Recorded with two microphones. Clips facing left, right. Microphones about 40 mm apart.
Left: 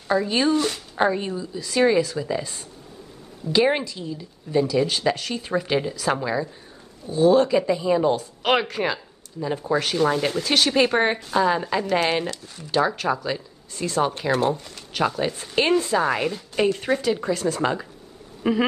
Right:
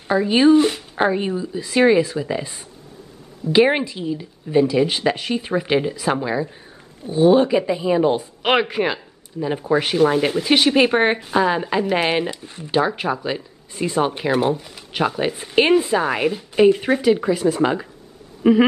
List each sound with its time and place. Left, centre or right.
0.1 s a woman's voice: right
7.1 s a woman's voice: right